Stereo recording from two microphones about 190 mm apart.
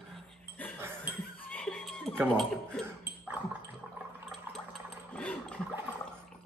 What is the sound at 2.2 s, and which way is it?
Speech, 5° left (ahead or behind).